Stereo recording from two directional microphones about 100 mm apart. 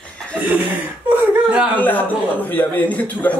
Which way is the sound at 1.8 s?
15° left (ahead or behind).